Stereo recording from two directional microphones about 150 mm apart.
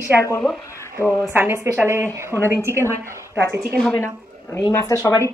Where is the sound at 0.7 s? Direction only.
20° left (ahead or behind).